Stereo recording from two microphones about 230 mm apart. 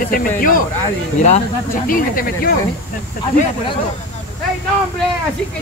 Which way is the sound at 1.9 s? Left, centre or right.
Left.